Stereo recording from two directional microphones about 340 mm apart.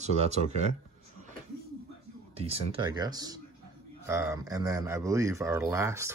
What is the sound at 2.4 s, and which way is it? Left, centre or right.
Speech, centre.